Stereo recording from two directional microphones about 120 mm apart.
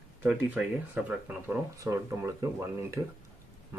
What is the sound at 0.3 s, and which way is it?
Speech, 5° right (ahead or behind).